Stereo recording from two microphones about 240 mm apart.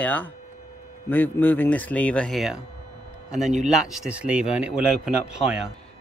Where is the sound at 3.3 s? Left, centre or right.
Right.